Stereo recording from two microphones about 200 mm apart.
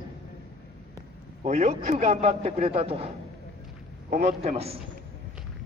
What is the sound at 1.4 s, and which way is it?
A man's voice, 30° right (ahead or behind).